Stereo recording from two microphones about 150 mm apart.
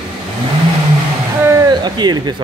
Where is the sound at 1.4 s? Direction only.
20° right (ahead or behind).